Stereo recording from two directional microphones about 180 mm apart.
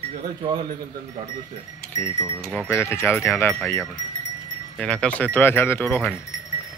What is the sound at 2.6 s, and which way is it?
Speech, 15° left (ahead or behind).